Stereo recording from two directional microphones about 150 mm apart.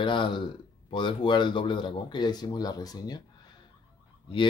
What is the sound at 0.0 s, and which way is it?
Speech, 35° left (ahead or behind).